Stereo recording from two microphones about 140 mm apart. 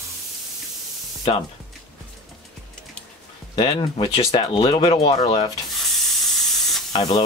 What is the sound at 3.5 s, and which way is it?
Speech, 40° left (ahead or behind).